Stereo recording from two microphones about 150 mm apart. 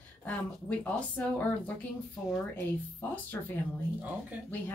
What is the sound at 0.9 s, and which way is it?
Speech, 10° left (ahead or behind).